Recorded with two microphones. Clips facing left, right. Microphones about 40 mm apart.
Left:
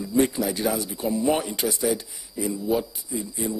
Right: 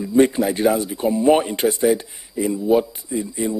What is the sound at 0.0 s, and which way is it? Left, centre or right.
A man's voice, right.